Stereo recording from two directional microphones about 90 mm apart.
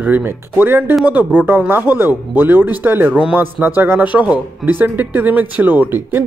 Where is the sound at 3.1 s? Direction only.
10° right (ahead or behind).